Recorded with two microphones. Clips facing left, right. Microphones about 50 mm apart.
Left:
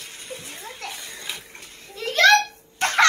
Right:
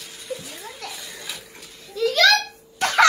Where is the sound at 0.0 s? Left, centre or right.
Left.